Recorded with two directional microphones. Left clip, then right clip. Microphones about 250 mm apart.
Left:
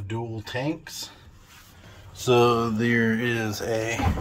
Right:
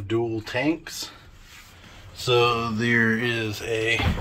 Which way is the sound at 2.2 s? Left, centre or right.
Left.